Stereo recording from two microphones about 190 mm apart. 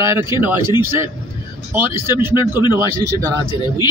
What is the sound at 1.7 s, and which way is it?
Speech, 10° right (ahead or behind).